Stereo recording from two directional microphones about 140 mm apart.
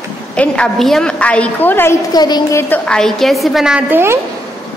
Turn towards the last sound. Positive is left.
turn(degrees=-5)  # may be behind; listen again after turning